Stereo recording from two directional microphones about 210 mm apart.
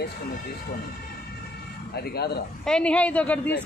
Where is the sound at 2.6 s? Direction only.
5° left (ahead or behind).